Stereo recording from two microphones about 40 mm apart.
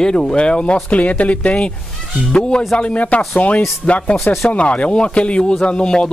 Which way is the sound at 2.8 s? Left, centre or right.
Left.